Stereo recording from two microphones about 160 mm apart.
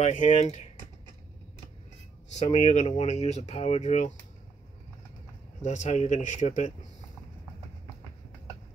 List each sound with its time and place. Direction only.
0.1 s speech: 50° left (ahead or behind)
2.3 s speech: 45° left (ahead or behind)
5.6 s speech: 50° left (ahead or behind)